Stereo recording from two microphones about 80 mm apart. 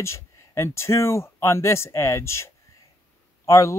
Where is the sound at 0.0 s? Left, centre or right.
Left.